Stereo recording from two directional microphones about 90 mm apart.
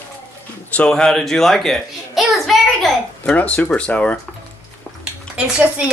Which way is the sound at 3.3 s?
15° left (ahead or behind).